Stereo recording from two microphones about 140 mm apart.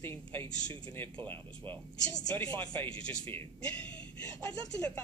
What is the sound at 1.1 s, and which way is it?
Speech, 35° right (ahead or behind).